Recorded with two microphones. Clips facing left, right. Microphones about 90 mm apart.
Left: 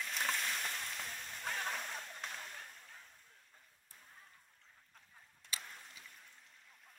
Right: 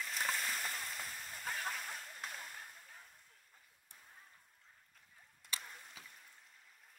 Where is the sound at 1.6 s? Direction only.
5° right (ahead or behind).